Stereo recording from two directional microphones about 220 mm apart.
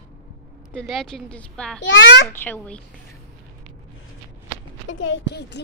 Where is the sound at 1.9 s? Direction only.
55° left (ahead or behind).